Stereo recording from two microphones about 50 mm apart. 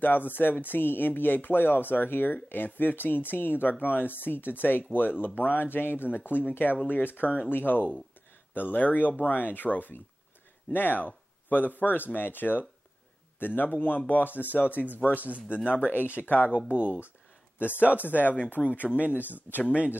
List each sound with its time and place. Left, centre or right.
0.0 s speech: left
15.1 s speech: right
15.7 s speech: left
16.5 s speech: right
17.6 s speech: left
18.3 s speech: left